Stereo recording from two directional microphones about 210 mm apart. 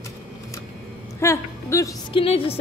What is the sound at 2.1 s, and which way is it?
Speech, 25° left (ahead or behind).